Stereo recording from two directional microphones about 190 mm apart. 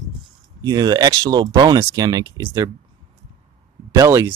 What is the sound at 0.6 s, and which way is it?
Speech, 20° right (ahead or behind).